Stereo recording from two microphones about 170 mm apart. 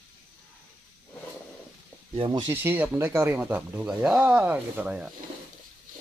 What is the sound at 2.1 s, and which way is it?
Speech, 25° right (ahead or behind).